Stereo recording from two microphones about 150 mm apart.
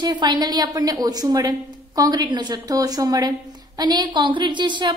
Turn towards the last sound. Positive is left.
turn(degrees=-30)  # may be behind; listen again after turning